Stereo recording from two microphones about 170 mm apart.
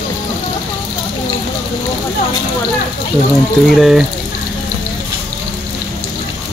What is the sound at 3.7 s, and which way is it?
Speech, centre (ahead or behind).